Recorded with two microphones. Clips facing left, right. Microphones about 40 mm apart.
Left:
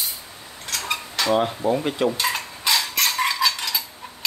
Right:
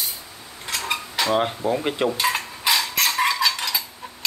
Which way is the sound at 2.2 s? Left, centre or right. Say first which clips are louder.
Right 2 dB; centre.